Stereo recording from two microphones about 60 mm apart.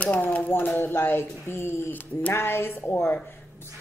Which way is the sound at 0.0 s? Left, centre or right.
Left.